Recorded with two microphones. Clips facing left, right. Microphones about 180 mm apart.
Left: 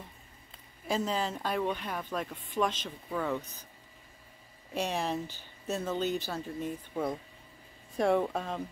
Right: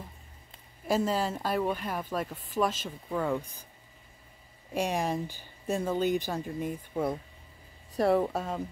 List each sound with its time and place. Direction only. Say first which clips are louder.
0.8 s speech: right 4 dB; 5° right (ahead or behind)
4.7 s speech: right 3 dB; 10° right (ahead or behind)